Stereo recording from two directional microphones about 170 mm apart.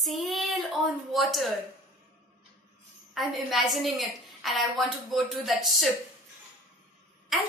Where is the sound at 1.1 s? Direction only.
Centre (ahead or behind).